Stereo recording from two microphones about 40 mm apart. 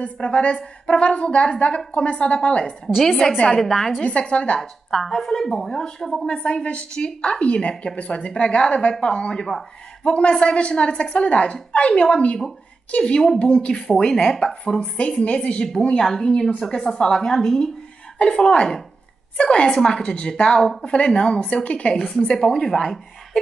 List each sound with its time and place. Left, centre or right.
0.0 s a woman's voice: left
3.6 s a woman's voice: centre
4.0 s a woman's voice: left
4.6 s a woman's voice: centre
6.2 s a woman's voice: left
13.8 s a woman's voice: centre
16.0 s a woman's voice: centre
16.3 s a woman's voice: centre
18.2 s a woman's voice: left
22.0 s a woman's voice: centre